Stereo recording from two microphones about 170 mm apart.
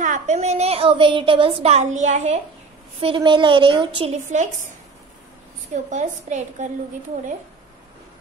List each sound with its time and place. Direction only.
0.0 s a woman's voice: 45° right (ahead or behind)
3.0 s a woman's voice: 30° right (ahead or behind); by 4.6 s 45° right (ahead or behind)
5.7 s a woman's voice: 45° right (ahead or behind)